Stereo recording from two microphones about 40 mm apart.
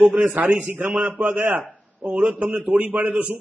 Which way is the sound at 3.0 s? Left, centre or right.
Right.